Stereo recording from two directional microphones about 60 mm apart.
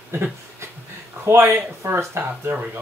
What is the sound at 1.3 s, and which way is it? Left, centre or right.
Speech, right.